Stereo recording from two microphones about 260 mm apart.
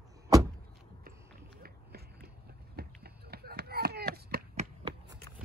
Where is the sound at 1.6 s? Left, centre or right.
Right.